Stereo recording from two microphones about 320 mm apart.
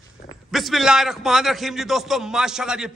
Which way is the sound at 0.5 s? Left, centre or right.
Centre.